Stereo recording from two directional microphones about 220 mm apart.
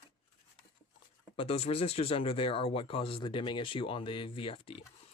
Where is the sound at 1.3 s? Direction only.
25° left (ahead or behind).